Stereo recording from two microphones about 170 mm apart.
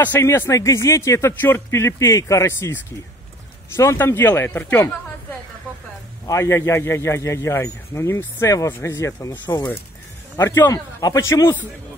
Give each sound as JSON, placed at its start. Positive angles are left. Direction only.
{"t": 0.0, "sound": "a man's voice", "side_deg": 10}
{"t": 6.2, "sound": "a man's voice", "side_deg": 15}